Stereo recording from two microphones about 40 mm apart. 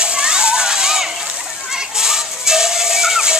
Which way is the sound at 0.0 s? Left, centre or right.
Right.